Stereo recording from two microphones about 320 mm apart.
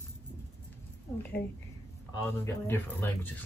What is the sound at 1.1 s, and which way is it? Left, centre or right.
Speech, centre.